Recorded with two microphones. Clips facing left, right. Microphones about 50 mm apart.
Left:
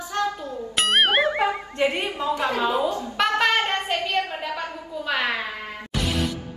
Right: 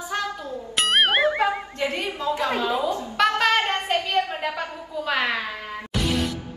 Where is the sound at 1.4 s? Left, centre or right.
Left.